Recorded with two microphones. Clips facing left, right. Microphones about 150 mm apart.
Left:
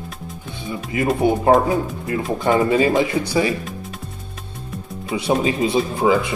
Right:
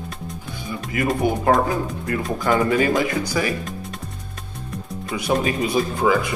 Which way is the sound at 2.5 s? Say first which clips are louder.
Left 2 dB; 25° left (ahead or behind).